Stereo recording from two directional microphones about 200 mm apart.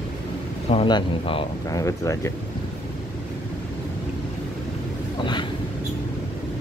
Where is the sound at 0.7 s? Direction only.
25° left (ahead or behind).